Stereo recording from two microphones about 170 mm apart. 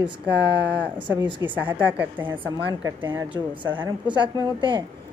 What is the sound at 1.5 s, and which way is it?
Speech, 10° right (ahead or behind).